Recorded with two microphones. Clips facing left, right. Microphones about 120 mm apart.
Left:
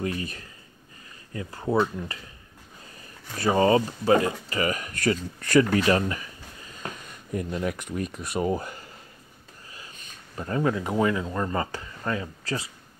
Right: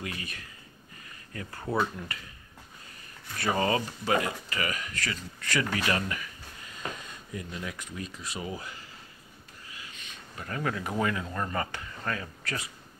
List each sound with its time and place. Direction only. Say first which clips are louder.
0.0 s speech: left 8 dB; 35° left (ahead or behind)
1.3 s speech: left 6 dB; 20° left (ahead or behind)
3.3 s speech: left 7 dB; 30° left (ahead or behind)
7.3 s speech: left 9 dB; 50° left (ahead or behind)
9.7 s speech: left 1 dB; 35° left (ahead or behind)